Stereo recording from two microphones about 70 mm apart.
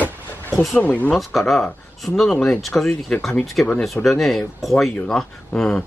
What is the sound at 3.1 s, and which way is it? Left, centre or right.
Speech, centre.